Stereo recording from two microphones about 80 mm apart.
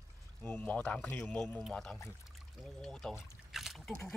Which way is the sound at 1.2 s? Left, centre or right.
Centre.